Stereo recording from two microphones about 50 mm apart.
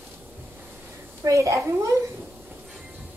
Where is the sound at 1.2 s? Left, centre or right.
Right.